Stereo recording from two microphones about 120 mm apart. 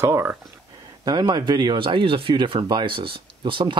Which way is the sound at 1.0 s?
35° right (ahead or behind).